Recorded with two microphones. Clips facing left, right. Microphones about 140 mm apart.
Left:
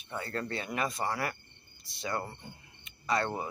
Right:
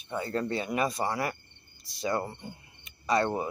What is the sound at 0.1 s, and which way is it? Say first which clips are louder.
Speech: right 5 dB; 20° right (ahead or behind).